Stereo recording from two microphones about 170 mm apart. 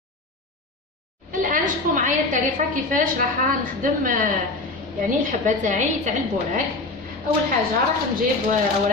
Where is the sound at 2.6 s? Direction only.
50° right (ahead or behind).